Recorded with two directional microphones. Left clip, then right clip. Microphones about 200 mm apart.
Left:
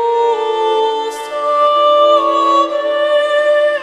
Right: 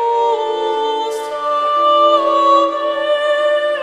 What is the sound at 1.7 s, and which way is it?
Music, 5° left (ahead or behind).